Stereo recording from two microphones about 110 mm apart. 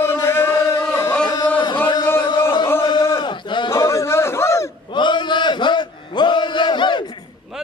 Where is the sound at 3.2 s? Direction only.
45° left (ahead or behind).